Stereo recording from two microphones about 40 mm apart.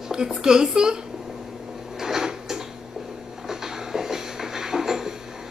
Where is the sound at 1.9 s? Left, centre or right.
Centre.